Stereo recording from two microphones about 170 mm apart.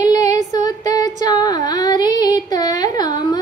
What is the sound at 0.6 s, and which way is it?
Female singing, 20° left (ahead or behind).